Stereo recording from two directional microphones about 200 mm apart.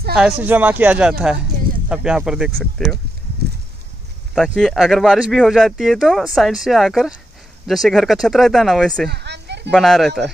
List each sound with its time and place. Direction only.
0.1 s speech: 5° right (ahead or behind)
4.4 s speech: centre (ahead or behind)
9.1 s children playing: 60° right (ahead or behind)
9.7 s speech: centre (ahead or behind)